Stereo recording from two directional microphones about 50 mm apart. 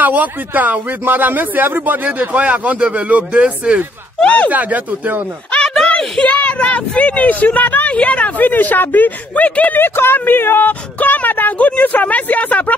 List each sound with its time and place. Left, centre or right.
0.0 s a man's voice: right
4.2 s speech: left
4.5 s a man's voice: right
5.9 s speech: left
8.5 s a woman's voice: left